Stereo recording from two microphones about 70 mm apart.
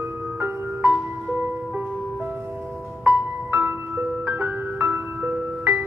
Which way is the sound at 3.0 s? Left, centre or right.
Right.